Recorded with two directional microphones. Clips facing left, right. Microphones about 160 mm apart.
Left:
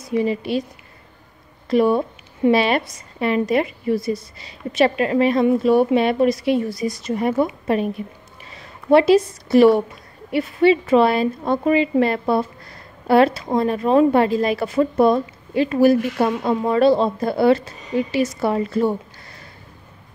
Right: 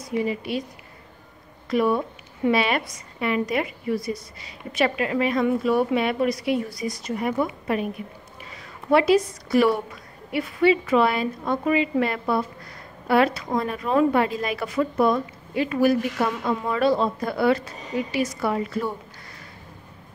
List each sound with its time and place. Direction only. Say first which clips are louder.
0.2 s a woman's voice: left 5 dB; 30° left (ahead or behind)
1.7 s a woman's voice: left 5 dB; 30° left (ahead or behind)
8.9 s a woman's voice: left 5 dB; 30° left (ahead or behind)